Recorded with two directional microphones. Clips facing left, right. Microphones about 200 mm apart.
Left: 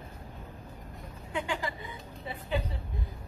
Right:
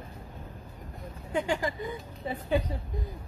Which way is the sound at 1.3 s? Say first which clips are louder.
Right 5 dB; 40° right (ahead or behind).